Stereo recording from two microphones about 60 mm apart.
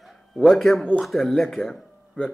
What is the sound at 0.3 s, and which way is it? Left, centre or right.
A man's voice, centre.